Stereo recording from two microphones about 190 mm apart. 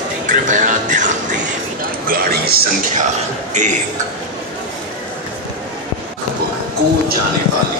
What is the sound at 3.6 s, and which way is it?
Speech, 40° right (ahead or behind).